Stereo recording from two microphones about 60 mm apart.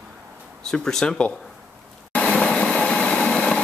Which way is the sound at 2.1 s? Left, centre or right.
Left.